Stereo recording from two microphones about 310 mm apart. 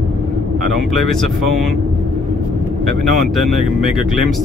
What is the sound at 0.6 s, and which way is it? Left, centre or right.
Speech, left.